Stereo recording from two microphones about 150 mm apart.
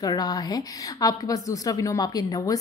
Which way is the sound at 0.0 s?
25° left (ahead or behind).